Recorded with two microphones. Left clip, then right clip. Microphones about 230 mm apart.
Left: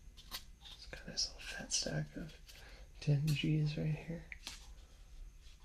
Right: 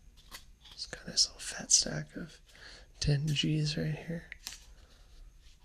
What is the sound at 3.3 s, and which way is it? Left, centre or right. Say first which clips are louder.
Speech: right 6 dB; right.